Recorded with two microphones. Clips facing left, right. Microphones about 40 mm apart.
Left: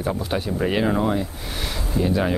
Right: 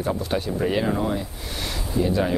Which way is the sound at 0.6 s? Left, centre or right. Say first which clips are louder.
Left 3 dB; centre.